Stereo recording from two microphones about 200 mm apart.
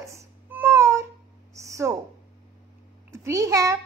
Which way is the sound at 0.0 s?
15° right (ahead or behind).